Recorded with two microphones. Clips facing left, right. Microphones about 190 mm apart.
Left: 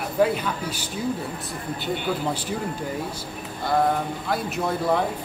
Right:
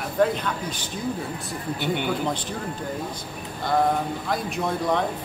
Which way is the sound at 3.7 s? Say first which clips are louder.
Even; centre (ahead or behind).